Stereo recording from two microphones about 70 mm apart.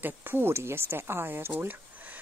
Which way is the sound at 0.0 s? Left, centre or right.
Right.